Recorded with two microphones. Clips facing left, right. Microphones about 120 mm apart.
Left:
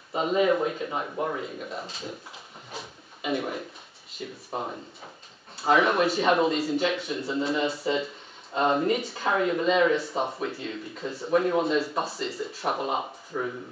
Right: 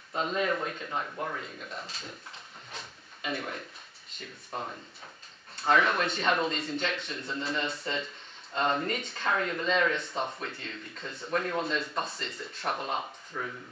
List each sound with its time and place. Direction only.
0.1 s speech: 10° left (ahead or behind)
1.4 s speech: 5° left (ahead or behind)
2.7 s drawer open or close: 5° left (ahead or behind)
4.1 s speech: 5° left (ahead or behind)